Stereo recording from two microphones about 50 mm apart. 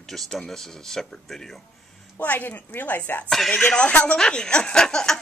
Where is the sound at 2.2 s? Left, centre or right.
Left.